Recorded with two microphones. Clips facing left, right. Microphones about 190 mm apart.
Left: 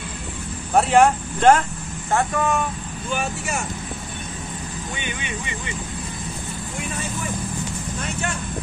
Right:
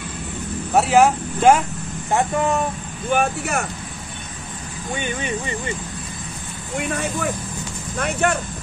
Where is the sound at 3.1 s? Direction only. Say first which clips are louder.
Right 6 dB; 60° right (ahead or behind).